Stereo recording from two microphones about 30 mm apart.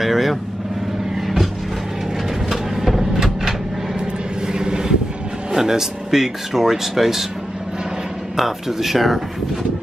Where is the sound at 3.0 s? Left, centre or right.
Centre.